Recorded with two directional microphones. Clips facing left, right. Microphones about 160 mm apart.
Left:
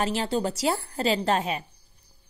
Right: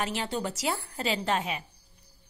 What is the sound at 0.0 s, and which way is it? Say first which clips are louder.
A woman's voice: left 5 dB; 35° left (ahead or behind).